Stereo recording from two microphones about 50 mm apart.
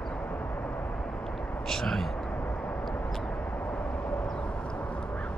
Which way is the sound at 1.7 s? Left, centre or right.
Centre.